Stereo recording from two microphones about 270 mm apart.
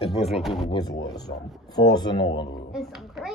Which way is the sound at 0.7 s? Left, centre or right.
Centre.